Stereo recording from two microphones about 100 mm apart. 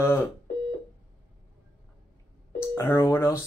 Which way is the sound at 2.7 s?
30° left (ahead or behind).